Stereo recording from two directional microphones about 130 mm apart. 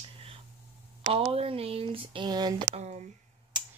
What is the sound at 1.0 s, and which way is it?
Speech, 45° right (ahead or behind).